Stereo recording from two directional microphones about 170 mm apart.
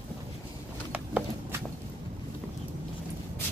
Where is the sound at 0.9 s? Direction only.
10° right (ahead or behind).